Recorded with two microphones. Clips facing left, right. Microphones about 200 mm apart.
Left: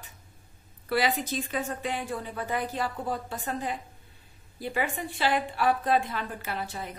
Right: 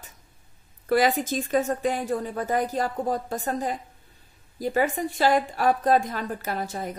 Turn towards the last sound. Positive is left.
turn(degrees=-45)  # may be behind; listen again after turning